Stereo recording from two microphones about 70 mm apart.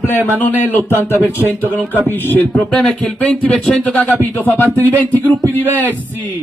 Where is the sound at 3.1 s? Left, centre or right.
Centre.